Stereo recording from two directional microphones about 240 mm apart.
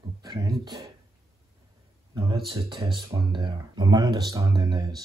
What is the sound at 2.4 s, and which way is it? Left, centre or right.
Speech, right.